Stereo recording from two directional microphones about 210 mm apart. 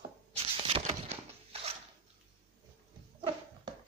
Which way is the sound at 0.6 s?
30° right (ahead or behind).